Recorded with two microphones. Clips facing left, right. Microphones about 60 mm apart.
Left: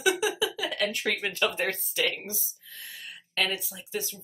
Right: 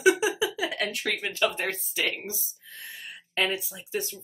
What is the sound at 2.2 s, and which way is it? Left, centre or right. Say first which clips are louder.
Speech: right 2 dB; right.